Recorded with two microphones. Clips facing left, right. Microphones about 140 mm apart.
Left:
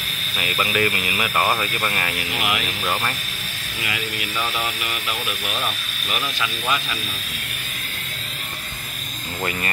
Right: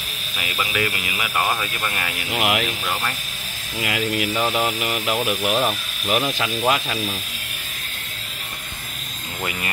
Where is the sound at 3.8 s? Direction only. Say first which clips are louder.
Right 5 dB; 55° right (ahead or behind).